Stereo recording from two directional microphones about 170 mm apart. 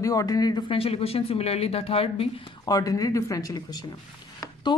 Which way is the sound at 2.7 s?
20° left (ahead or behind).